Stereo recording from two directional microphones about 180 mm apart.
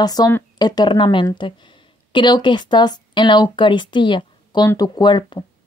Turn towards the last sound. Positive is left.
turn(degrees=25)  # may be behind; listen again after turning